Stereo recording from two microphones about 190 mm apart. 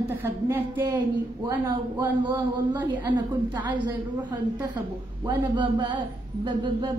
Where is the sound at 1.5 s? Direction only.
20° right (ahead or behind).